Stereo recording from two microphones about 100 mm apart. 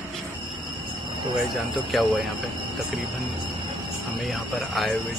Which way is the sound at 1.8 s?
Centre (ahead or behind).